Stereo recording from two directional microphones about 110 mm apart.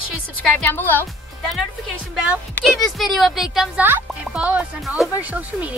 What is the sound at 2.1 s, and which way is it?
Speech, 10° right (ahead or behind).